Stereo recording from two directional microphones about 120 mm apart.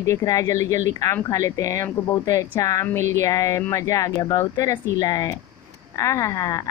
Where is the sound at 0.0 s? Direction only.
25° left (ahead or behind).